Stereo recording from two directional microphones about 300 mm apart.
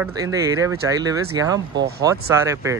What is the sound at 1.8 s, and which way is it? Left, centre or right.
Speech, right.